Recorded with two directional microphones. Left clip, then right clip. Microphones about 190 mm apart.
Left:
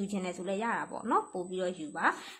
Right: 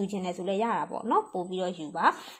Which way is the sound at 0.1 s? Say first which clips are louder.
Right 4 dB; 15° right (ahead or behind).